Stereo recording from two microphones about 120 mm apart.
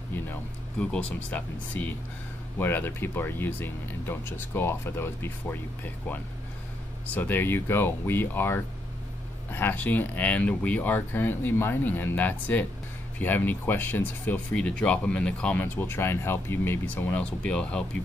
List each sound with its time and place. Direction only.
0.1 s speech: 15° left (ahead or behind)
7.2 s speech: 15° left (ahead or behind)